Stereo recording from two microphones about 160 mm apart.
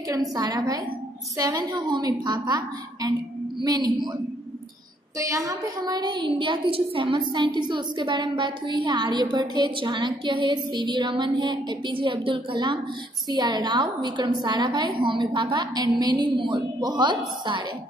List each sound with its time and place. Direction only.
0.1 s a woman's voice: 25° right (ahead or behind)
5.2 s a woman's voice: 20° right (ahead or behind)